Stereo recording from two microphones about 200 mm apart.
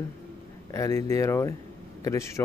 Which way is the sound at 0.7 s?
15° left (ahead or behind).